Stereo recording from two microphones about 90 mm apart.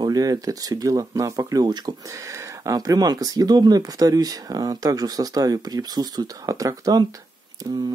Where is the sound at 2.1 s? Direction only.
35° right (ahead or behind).